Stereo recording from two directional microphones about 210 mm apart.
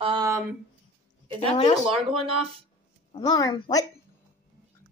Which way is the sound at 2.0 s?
25° right (ahead or behind).